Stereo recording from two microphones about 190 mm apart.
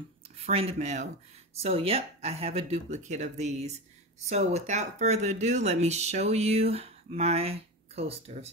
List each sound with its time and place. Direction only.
0.4 s speech: 30° right (ahead or behind)